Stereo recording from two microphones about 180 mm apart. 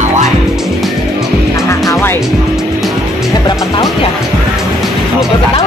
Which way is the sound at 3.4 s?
25° left (ahead or behind).